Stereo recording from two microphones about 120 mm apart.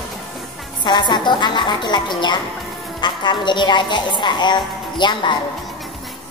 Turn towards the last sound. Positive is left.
turn(degrees=40)  # may be behind; listen again after turning